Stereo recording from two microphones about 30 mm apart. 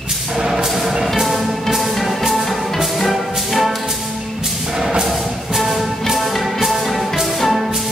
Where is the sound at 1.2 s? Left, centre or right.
Centre.